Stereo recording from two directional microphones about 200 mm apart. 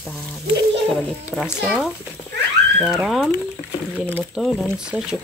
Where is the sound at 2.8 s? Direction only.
Centre (ahead or behind).